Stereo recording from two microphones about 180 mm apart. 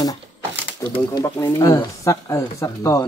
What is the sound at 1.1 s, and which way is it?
Speech, 15° left (ahead or behind).